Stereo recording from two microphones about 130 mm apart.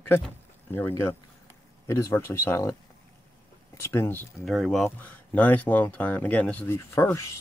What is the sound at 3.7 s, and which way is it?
Speech, 20° left (ahead or behind).